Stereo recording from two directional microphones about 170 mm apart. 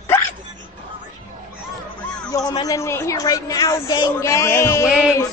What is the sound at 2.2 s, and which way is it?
A man's voice, 25° left (ahead or behind).